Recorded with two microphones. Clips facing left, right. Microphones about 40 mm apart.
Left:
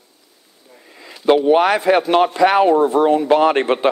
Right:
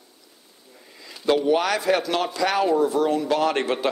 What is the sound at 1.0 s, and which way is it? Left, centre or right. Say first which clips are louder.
Speech: left 7 dB; left.